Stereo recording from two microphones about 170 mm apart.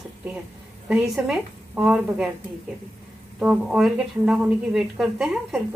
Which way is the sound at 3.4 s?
5° right (ahead or behind).